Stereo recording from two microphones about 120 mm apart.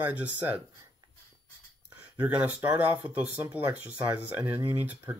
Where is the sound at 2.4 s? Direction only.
15° right (ahead or behind).